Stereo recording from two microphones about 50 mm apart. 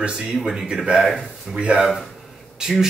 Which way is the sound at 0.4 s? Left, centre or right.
Centre.